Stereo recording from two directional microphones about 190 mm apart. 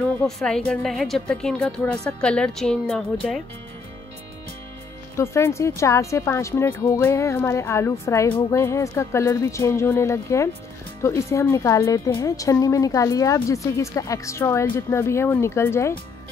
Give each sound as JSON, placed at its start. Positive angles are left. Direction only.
{"t": 0.0, "sound": "a woman's voice", "side_deg": 5}
{"t": 5.1, "sound": "a woman's voice", "side_deg": 15}